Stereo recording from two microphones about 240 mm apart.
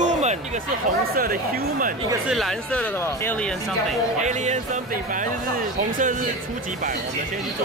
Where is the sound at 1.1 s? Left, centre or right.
Right.